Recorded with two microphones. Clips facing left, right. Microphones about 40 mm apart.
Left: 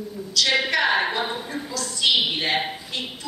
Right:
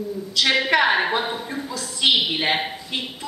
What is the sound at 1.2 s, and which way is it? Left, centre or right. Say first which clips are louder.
Speech: right 1 dB; centre.